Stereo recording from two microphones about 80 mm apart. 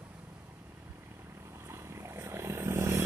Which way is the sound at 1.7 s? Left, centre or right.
Right.